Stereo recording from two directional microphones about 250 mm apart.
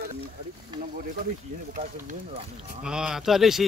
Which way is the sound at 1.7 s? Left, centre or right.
Right.